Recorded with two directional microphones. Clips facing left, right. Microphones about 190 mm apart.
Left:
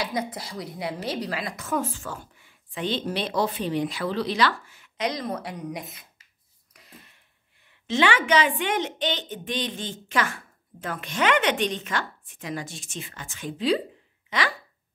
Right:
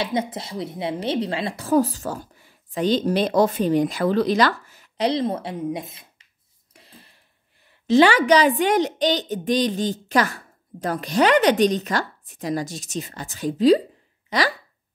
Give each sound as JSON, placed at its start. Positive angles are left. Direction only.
{"t": 0.0, "sound": "a woman's voice", "side_deg": -25}
{"t": 6.7, "sound": "a sound", "side_deg": -30}
{"t": 7.8, "sound": "a woman's voice", "side_deg": -40}